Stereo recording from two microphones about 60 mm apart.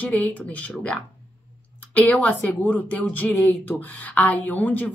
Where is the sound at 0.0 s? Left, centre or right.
Left.